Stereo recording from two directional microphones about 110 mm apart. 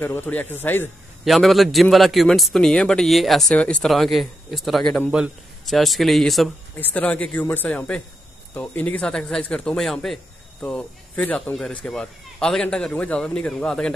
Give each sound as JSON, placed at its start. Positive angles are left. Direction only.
{"t": 0.0, "sound": "speech", "side_deg": 20}
{"t": 1.2, "sound": "a man's voice", "side_deg": 0}
{"t": 5.1, "sound": "a man's voice", "side_deg": -5}
{"t": 6.8, "sound": "a man's voice", "side_deg": 15}